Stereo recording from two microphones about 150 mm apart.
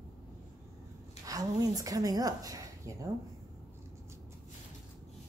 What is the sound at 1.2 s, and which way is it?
A woman's voice, 25° right (ahead or behind).